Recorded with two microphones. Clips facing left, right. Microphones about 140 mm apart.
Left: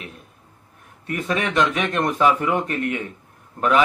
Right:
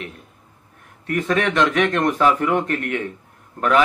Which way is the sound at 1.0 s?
20° left (ahead or behind).